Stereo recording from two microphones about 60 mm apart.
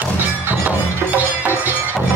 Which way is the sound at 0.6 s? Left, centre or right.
Right.